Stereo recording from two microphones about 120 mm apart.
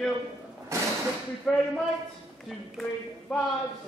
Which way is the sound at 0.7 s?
25° right (ahead or behind).